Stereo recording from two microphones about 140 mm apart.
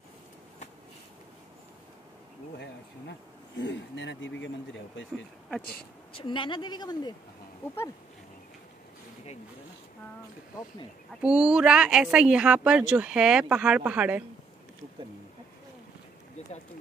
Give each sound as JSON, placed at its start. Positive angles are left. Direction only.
{"t": 6.1, "sound": "a woman's voice", "side_deg": 35}
{"t": 11.2, "sound": "speech", "side_deg": -5}